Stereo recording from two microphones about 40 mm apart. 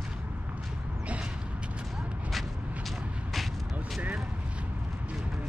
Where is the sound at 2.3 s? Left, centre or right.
Centre.